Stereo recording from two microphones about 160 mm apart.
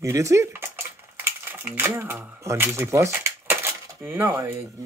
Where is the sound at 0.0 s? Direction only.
20° right (ahead or behind).